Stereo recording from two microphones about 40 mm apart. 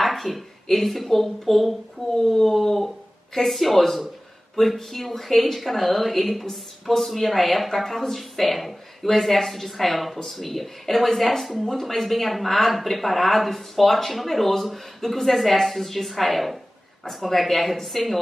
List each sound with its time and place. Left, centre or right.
0.0 s speech: centre